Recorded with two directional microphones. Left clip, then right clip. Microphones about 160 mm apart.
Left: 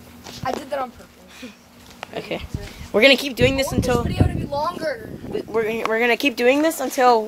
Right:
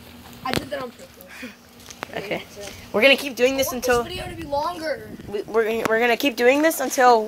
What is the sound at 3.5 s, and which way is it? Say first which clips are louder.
Speech: even; 10° left (ahead or behind).